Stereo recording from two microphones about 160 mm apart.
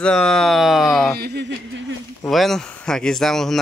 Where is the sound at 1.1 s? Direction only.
90° right.